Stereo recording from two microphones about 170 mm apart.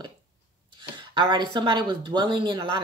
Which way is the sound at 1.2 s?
25° right (ahead or behind).